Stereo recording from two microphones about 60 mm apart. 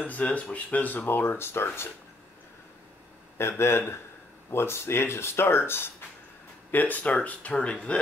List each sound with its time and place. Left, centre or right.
0.0 s speech: left
3.3 s speech: left; by 8.0 s centre